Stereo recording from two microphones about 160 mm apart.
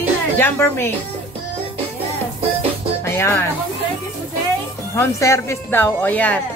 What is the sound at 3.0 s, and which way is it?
Music, 15° left (ahead or behind).